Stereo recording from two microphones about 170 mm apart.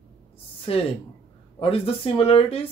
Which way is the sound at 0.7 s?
35° left (ahead or behind).